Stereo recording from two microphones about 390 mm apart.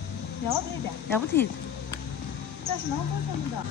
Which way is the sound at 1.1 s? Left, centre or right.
Centre.